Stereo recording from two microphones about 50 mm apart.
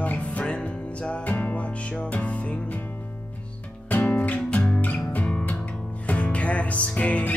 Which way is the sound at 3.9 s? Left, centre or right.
Left.